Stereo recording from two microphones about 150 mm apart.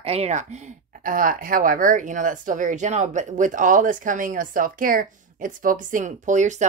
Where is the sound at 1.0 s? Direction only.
65° right (ahead or behind).